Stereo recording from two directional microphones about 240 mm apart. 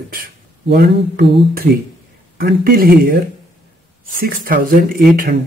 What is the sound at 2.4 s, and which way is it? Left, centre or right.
Speech, right.